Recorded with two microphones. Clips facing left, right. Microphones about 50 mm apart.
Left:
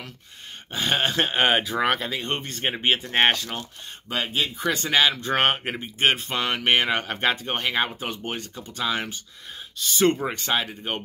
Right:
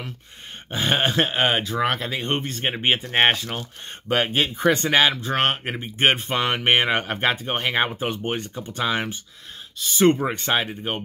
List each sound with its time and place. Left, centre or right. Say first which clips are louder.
0.7 s speech: right 2 dB; centre
1.3 s speech: even; centre
2.1 s speech: right 3 dB; right
2.4 s speech: right 2 dB; centre
2.8 s speech: right 1 dB; centre
4.1 s speech: right 5 dB; right
4.8 s speech: left 1 dB; right
5.3 s speech: even; centre
5.8 s speech: right 2 dB; right